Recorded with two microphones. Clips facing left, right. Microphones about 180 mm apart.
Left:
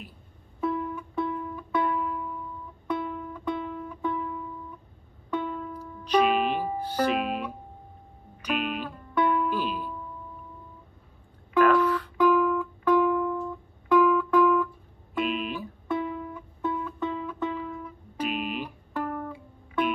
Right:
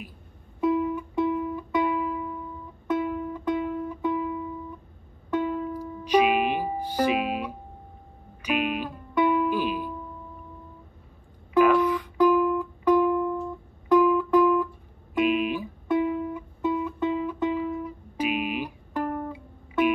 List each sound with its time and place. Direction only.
0.6 s music: 15° right (ahead or behind)
11.5 s music: 10° right (ahead or behind)